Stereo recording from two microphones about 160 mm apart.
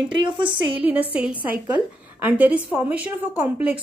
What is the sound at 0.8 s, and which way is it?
A woman's voice, 10° right (ahead or behind).